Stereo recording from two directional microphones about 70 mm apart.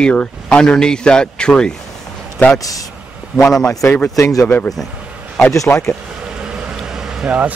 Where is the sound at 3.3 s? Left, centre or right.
Centre.